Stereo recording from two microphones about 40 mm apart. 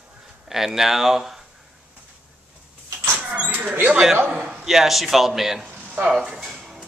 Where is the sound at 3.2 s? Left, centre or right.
Right.